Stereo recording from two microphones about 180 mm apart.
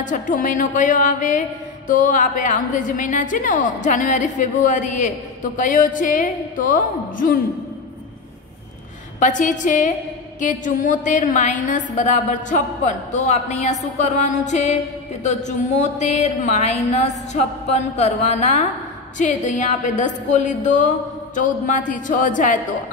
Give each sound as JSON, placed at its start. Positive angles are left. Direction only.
{"t": 0.0, "sound": "a woman's voice", "side_deg": 45}
{"t": 9.2, "sound": "a woman's voice", "side_deg": 45}